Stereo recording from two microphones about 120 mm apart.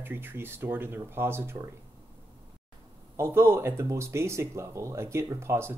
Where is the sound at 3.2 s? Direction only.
20° right (ahead or behind).